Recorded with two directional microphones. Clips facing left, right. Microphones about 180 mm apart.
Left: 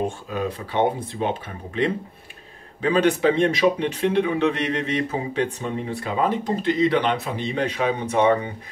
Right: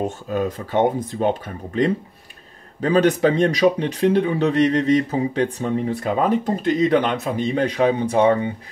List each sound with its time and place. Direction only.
0.3 s speech: 45° right (ahead or behind)
2.8 s speech: 40° right (ahead or behind)